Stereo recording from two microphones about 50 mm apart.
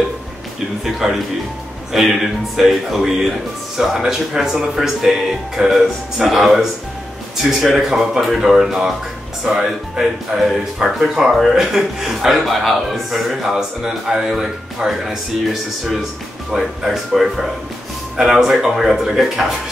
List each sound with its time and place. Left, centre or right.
0.8 s speech: centre
10.8 s speech: centre